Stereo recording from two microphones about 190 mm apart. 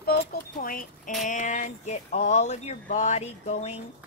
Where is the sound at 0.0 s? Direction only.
55° left (ahead or behind).